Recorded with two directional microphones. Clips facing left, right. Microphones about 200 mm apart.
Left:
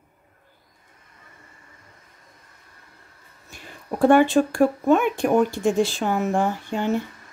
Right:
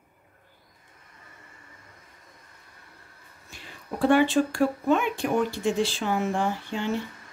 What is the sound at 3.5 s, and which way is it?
Speech, 50° left (ahead or behind).